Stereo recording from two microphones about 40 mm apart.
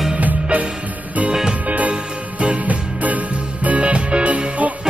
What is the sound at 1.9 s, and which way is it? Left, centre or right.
Music, right.